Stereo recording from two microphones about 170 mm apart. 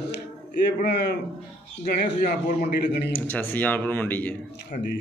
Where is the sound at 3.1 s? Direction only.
10° left (ahead or behind).